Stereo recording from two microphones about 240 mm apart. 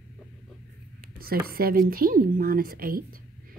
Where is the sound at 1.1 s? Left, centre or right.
Right.